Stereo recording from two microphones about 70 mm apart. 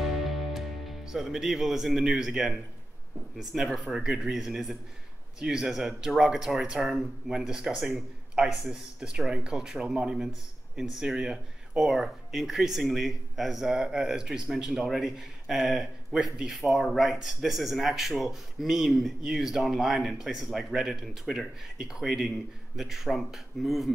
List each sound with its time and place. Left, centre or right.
0.2 s music: centre
3.3 s speech: centre